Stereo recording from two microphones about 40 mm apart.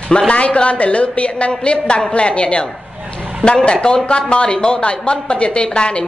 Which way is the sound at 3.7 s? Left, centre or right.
Left.